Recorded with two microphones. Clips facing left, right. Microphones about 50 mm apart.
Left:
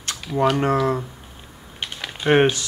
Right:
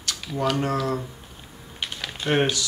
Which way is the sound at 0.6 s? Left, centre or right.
Left.